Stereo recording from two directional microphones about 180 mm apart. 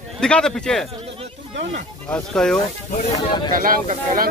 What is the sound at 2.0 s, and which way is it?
Speech, 5° left (ahead or behind).